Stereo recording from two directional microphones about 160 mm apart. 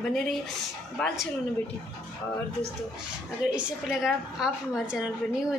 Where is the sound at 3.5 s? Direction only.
5° right (ahead or behind).